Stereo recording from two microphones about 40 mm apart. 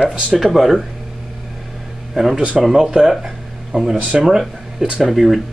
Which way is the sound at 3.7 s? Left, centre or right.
Right.